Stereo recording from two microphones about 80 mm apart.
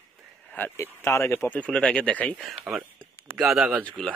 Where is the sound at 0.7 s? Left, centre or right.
Left.